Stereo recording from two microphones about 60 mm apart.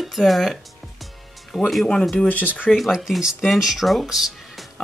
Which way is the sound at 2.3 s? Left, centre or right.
Left.